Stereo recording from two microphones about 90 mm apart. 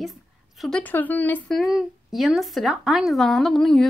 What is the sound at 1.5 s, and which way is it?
Speech, centre (ahead or behind).